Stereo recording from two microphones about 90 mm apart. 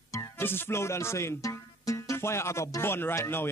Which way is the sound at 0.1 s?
25° left (ahead or behind).